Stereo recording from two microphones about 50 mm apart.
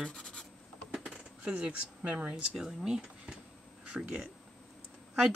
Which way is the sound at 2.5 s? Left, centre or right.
Centre.